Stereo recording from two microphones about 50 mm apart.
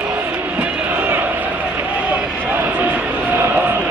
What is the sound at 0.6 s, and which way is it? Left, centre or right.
Crowd, right.